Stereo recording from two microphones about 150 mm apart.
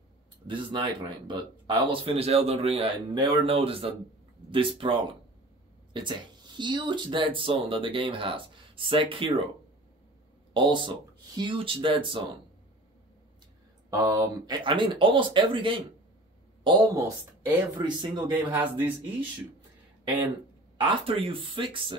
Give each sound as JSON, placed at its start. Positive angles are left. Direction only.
{"t": 0.5, "sound": "speech", "side_deg": -35}
{"t": 10.5, "sound": "speech", "side_deg": -30}
{"t": 13.8, "sound": "speech", "side_deg": -25}
{"t": 16.6, "sound": "speech", "side_deg": -25}
{"t": 20.7, "sound": "speech", "side_deg": -35}